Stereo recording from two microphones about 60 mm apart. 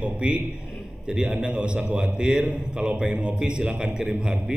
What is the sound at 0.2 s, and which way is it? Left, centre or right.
A man's voice, centre.